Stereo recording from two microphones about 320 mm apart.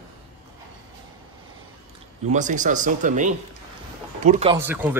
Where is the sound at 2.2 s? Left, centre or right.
Right.